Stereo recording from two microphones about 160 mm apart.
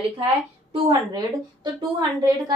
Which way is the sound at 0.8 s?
25° right (ahead or behind).